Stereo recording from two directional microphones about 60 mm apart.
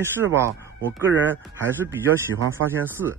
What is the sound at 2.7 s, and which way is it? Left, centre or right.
Speech, right.